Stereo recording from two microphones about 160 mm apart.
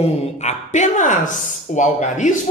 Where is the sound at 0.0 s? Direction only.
45° left (ahead or behind).